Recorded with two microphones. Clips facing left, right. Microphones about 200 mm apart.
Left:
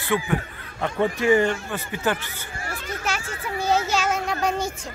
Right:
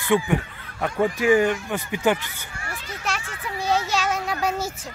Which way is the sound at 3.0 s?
Centre (ahead or behind).